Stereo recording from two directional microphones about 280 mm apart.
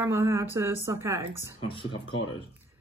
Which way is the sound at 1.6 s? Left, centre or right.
Centre.